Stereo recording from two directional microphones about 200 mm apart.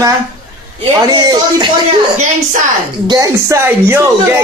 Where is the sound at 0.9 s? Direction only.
20° right (ahead or behind).